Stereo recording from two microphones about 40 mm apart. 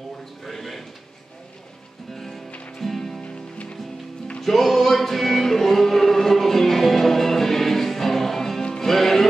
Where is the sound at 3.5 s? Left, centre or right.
Left.